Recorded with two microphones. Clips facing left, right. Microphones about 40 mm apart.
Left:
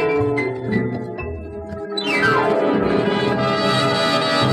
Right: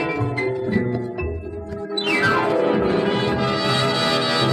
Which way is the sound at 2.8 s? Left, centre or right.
Centre.